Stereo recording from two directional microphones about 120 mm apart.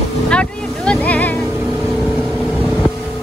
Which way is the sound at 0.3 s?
10° left (ahead or behind).